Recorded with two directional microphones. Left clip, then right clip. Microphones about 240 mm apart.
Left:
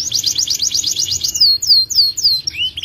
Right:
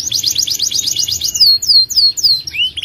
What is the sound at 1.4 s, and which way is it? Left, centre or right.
Bird, right.